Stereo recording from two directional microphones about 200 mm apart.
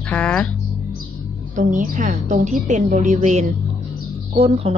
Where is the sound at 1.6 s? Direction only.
40° right (ahead or behind).